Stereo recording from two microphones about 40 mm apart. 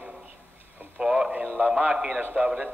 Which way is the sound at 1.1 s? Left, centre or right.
Right.